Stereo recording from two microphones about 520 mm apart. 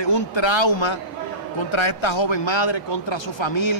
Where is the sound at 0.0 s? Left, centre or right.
Left.